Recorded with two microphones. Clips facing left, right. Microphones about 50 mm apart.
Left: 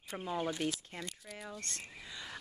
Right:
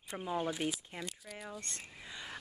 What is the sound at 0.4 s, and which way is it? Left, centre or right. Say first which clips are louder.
Speech: left 1 dB; centre.